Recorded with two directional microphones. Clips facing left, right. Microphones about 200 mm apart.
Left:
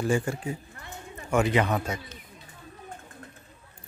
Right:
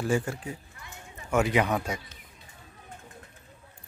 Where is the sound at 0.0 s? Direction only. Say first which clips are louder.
Left 2 dB; 5° right (ahead or behind).